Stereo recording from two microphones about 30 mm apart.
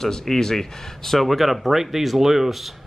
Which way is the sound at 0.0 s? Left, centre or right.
Centre.